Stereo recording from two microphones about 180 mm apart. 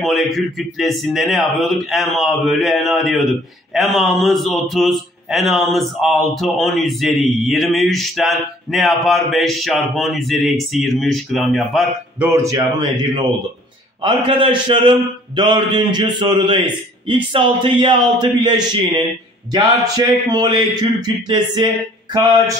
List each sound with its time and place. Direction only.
0.0 s speech: centre (ahead or behind)
12.2 s speech: 15° right (ahead or behind)
12.5 s a man's voice: 25° right (ahead or behind)
20.1 s a man's voice: 25° right (ahead or behind)